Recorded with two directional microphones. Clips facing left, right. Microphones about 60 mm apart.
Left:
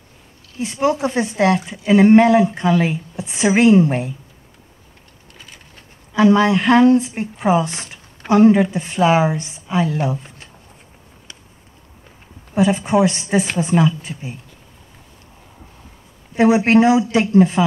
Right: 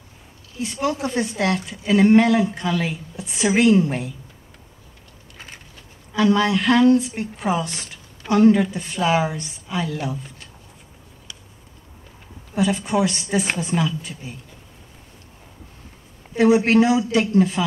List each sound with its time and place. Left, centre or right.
0.6 s a woman's voice: left
6.1 s a woman's voice: left
12.5 s a woman's voice: left
16.3 s a woman's voice: left